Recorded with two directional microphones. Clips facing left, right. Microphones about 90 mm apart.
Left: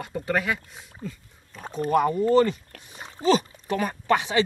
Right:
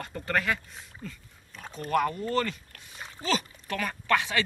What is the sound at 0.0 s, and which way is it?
Speech, 15° left (ahead or behind).